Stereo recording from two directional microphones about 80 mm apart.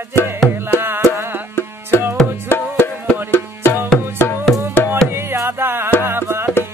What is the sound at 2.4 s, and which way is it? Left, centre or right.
Music, left.